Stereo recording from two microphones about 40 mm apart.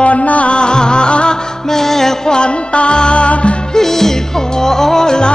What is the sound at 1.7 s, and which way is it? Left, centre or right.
Music, centre.